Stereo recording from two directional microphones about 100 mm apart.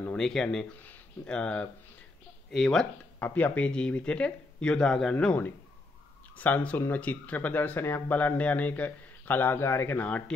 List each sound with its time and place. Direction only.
0.1 s speech: 5° left (ahead or behind)
3.2 s speech: 20° left (ahead or behind)